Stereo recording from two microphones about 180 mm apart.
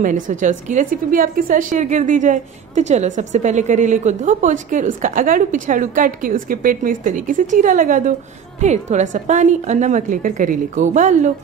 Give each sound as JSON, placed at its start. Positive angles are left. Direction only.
{"t": 0.0, "sound": "a woman's voice", "side_deg": -45}